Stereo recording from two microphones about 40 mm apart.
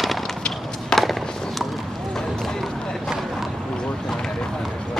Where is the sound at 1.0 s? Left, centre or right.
Centre.